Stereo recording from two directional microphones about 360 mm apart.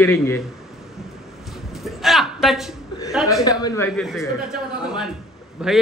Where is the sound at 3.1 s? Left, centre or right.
Centre.